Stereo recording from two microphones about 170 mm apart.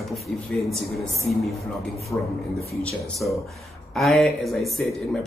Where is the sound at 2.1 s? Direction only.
Centre (ahead or behind).